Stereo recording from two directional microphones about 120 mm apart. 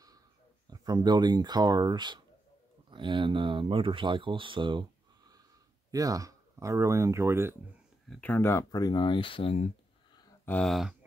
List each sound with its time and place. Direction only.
0.7 s speech: 35° right (ahead or behind)
5.9 s speech: 30° right (ahead or behind)
8.1 s speech: 15° left (ahead or behind); by 9.7 s 50° left (ahead or behind)
10.4 s speech: 15° left (ahead or behind)
10.7 s a sound: centre (ahead or behind)